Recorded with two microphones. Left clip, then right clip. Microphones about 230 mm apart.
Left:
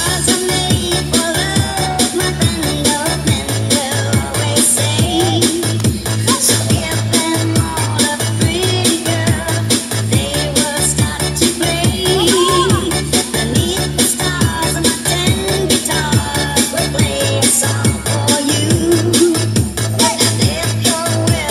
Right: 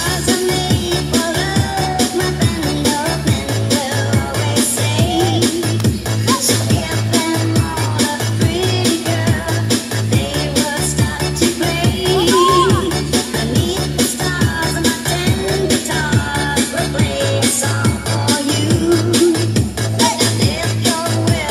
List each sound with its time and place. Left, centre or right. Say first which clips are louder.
0.3 s music: even; left